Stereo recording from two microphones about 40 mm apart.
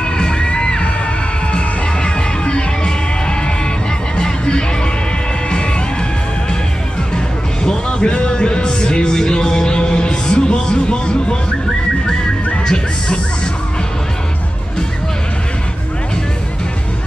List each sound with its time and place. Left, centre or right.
0.0 s music: left
2.0 s music: left
7.6 s music: left
12.6 s music: centre